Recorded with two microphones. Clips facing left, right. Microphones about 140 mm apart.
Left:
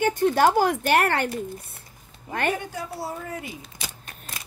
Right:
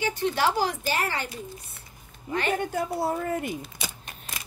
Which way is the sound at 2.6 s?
50° right (ahead or behind).